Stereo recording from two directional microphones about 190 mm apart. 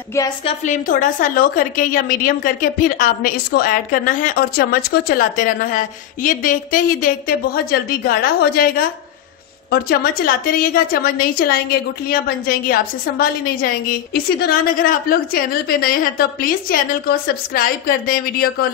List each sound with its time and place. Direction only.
0.5 s a woman's voice: 45° left (ahead or behind)